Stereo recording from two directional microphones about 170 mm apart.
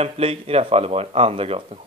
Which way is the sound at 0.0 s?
35° right (ahead or behind).